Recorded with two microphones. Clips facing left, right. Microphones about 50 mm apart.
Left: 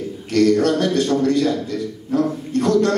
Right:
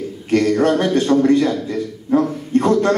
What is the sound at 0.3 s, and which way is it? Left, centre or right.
A man's voice, right.